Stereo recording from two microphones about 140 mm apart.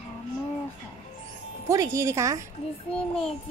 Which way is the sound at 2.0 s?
20° right (ahead or behind).